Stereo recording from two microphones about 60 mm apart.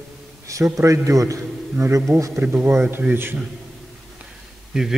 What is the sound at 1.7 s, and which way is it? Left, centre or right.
Speech, right.